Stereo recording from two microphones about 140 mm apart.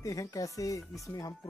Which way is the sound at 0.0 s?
25° left (ahead or behind).